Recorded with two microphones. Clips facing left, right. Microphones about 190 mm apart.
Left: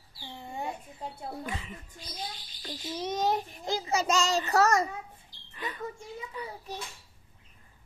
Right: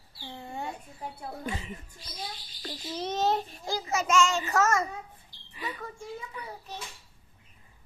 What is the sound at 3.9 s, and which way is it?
Speech, 35° left (ahead or behind).